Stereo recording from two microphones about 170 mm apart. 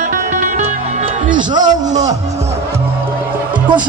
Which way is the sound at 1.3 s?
25° right (ahead or behind).